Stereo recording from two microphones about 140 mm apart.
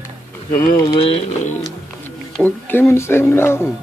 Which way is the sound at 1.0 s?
45° left (ahead or behind).